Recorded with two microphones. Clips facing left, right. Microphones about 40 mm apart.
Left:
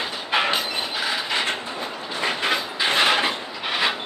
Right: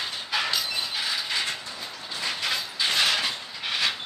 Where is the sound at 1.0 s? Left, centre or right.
Left.